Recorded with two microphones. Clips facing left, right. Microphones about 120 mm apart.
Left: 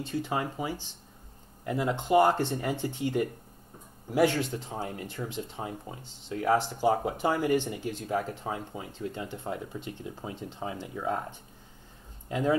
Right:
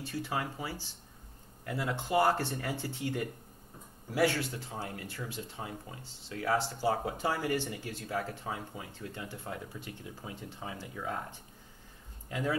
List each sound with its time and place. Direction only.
0.0 s speech: 20° left (ahead or behind)
12.3 s speech: 25° left (ahead or behind)